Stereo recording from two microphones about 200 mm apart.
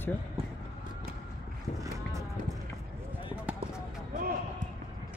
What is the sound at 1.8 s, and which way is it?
Boat, 15° right (ahead or behind).